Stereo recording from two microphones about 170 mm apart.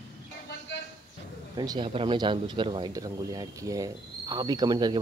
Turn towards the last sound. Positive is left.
turn(degrees=-25)  # may be behind; listen again after turning